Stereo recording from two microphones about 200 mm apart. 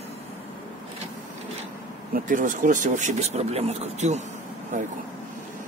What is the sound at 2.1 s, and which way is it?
A man's voice, 45° right (ahead or behind).